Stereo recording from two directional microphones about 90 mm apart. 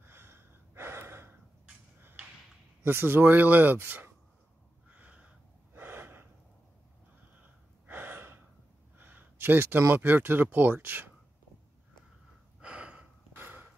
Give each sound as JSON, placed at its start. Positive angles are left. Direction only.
{"t": 0.0, "sound": "gasp", "side_deg": -25}
{"t": 2.8, "sound": "speech", "side_deg": -25}
{"t": 4.8, "sound": "a sound", "side_deg": -15}
{"t": 5.8, "sound": "gasp", "side_deg": -25}
{"t": 7.8, "sound": "gasp", "side_deg": -25}
{"t": 8.9, "sound": "speech", "side_deg": -20}
{"t": 12.5, "sound": "gasp", "side_deg": -10}
{"t": 13.4, "sound": "a sound", "side_deg": -20}